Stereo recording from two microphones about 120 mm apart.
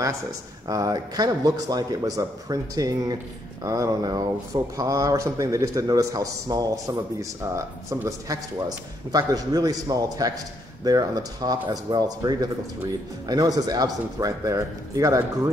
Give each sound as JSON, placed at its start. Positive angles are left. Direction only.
{"t": 0.7, "sound": "a man's voice", "side_deg": -35}